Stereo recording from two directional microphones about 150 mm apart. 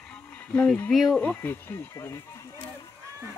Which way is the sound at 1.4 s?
15° left (ahead or behind).